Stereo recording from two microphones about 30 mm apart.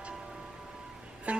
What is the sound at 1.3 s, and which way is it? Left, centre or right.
Music, right.